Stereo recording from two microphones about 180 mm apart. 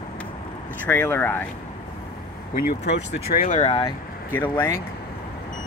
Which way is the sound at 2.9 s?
70° left (ahead or behind).